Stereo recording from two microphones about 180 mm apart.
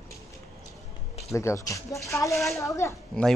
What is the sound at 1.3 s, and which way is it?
Speech, 15° left (ahead or behind).